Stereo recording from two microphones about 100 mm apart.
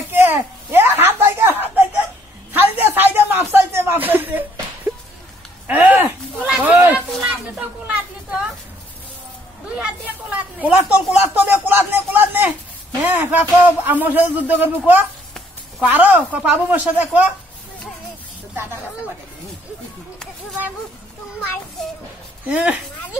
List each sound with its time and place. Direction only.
0.1 s speech: 20° right (ahead or behind)
2.5 s a sound: 20° right (ahead or behind)
5.7 s speech: 15° right (ahead or behind)
7.2 s a sound: 15° right (ahead or behind)
9.8 s speech: 15° right (ahead or behind)
22.5 s speech: 15° right (ahead or behind)